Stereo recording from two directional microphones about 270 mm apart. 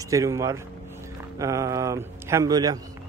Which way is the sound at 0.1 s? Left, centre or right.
Centre.